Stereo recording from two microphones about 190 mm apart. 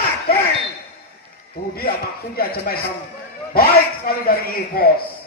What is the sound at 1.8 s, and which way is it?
A man's voice, 50° left (ahead or behind).